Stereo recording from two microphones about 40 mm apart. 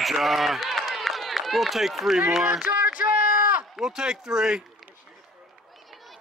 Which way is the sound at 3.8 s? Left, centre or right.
Centre.